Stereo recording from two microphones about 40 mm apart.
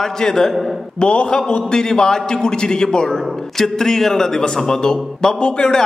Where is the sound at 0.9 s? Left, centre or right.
Left.